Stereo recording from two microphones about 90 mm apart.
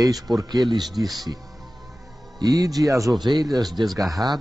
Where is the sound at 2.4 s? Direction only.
45° right (ahead or behind).